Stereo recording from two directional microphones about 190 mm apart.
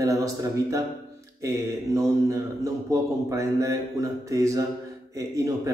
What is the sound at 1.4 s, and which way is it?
A man's voice, 15° right (ahead or behind).